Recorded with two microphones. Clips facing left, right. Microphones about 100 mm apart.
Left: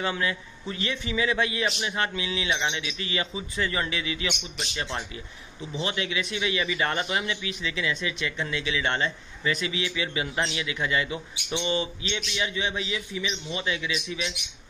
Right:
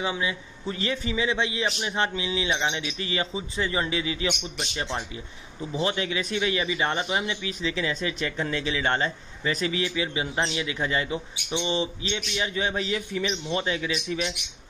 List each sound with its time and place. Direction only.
0.0 s a man's voice: 15° right (ahead or behind)
0.7 s a man's voice: 35° right (ahead or behind)
1.2 s a man's voice: 25° right (ahead or behind)
4.6 s a man's voice: 20° right (ahead or behind)
5.7 s a man's voice: 35° right (ahead or behind)
7.4 s a man's voice: 35° right (ahead or behind)
10.0 s a man's voice: 25° right (ahead or behind)